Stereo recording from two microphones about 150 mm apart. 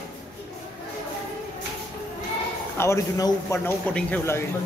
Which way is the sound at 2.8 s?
20° left (ahead or behind).